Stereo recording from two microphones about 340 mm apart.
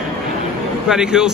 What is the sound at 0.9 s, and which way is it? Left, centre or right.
Speech, centre.